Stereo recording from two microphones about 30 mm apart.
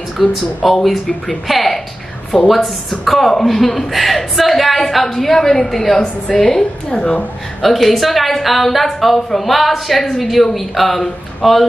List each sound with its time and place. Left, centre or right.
0.2 s a woman's voice: centre
1.5 s a sound: centre
2.4 s a woman's voice: centre
6.9 s a woman's voice: left
7.6 s a woman's voice: centre